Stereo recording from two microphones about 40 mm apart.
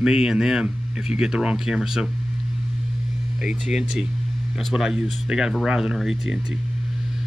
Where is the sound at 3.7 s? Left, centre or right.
Centre.